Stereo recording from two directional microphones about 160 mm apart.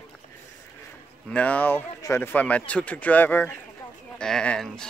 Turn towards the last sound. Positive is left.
turn(degrees=5)  # may be behind; listen again after turning